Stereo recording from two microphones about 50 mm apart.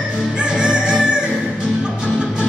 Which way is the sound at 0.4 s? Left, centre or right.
Centre.